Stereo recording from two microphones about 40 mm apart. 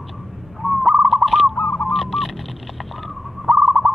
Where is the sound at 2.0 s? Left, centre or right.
Centre.